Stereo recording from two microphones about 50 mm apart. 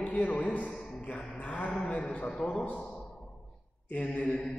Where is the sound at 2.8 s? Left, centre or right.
Centre.